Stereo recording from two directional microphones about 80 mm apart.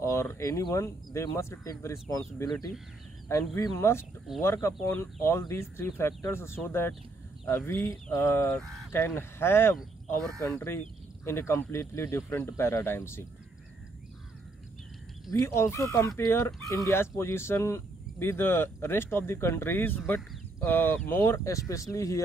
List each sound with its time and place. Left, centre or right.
0.0 s speech: left
15.3 s speech: left